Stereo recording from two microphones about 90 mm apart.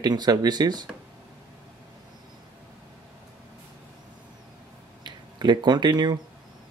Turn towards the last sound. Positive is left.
turn(degrees=-55)  # may be behind; listen again after turning